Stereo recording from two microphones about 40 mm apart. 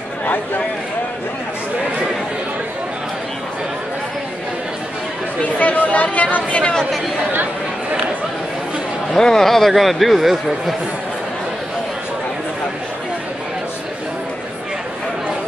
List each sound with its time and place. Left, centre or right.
5.4 s speech: left
9.1 s speech: centre